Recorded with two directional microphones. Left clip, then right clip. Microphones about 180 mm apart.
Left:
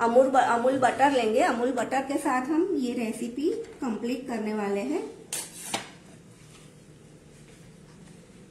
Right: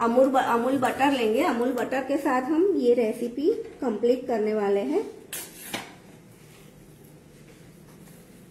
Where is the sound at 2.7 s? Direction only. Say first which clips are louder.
Right 8 dB; 60° left (ahead or behind).